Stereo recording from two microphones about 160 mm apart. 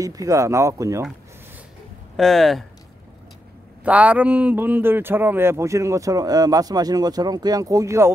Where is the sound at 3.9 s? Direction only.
10° right (ahead or behind).